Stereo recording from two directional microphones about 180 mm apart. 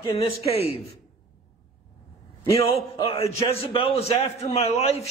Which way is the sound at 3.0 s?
30° left (ahead or behind).